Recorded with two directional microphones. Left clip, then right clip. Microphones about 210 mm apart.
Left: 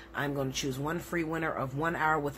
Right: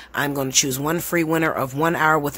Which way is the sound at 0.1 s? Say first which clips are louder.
Right 12 dB; 50° right (ahead or behind).